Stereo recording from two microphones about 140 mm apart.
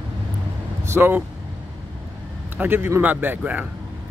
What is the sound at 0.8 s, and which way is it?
Speech, 15° right (ahead or behind).